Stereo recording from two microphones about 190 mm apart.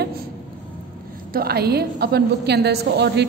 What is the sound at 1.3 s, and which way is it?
A woman's voice, 55° right (ahead or behind).